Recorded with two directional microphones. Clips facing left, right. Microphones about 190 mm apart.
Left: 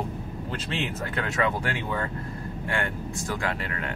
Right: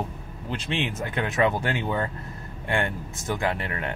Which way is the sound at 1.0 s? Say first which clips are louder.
Right 4 dB; 20° right (ahead or behind).